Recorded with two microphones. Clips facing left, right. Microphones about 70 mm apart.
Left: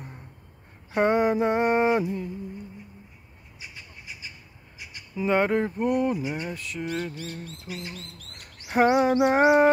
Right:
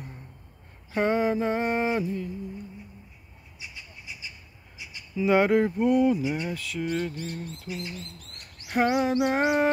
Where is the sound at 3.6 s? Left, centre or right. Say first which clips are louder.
Even; left.